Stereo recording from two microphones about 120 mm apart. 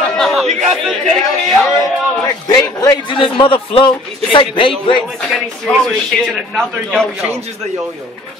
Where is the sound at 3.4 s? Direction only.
45° left (ahead or behind).